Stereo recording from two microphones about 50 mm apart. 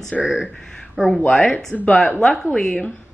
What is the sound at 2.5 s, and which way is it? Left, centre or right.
Speech, centre.